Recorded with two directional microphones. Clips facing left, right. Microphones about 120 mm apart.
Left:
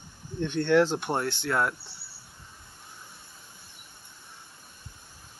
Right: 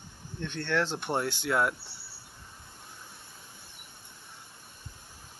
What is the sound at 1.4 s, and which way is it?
Speech, 10° right (ahead or behind).